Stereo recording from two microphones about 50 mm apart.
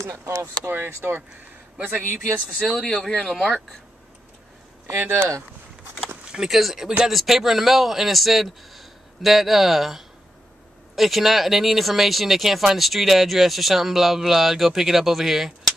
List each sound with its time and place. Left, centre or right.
0.0 s speech: right
0.7 s speech: right
1.8 s speech: right
2.3 s speech: right
2.8 s speech: centre
4.8 s speech: right
6.5 s speech: centre